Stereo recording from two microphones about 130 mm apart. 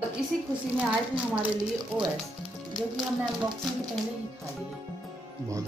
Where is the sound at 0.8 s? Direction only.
10° right (ahead or behind).